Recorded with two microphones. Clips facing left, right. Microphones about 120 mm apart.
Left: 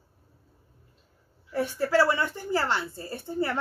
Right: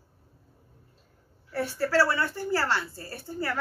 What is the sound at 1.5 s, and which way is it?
A woman's voice, 15° left (ahead or behind).